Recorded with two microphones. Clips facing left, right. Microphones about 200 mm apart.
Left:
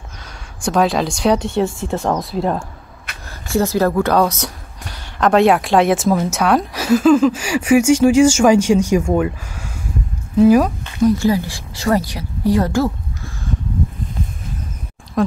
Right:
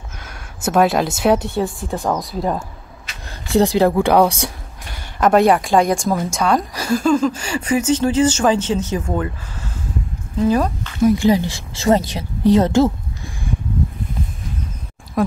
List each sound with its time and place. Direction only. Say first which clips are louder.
0.7 s speech: right 1 dB; 5° right (ahead or behind)
3.1 s a sound: left 3 dB; 60° left (ahead or behind)
3.4 s a woman's voice: right 2 dB; 15° right (ahead or behind); by 10.9 s 10° left (ahead or behind)
11.1 s a woman's voice: right 1 dB; 20° right (ahead or behind)
15.2 s speech: left 1 dB; 5° right (ahead or behind)